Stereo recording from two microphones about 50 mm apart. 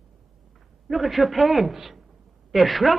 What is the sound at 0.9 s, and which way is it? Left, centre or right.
A man's voice, centre.